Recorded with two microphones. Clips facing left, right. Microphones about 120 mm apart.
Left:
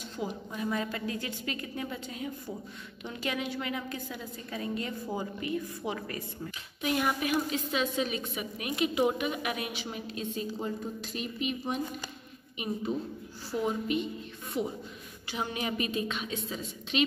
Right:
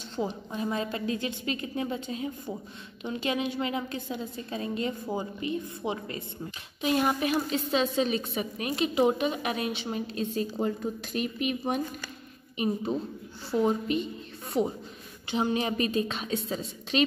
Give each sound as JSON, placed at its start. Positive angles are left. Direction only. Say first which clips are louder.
{"t": 0.1, "sound": "a woman's voice", "louder": "right 5 dB", "side_deg": -30}
{"t": 10.6, "sound": "speech", "louder": "right 5 dB", "side_deg": -60}
{"t": 13.5, "sound": "a woman's voice", "louder": "right 4 dB", "side_deg": -30}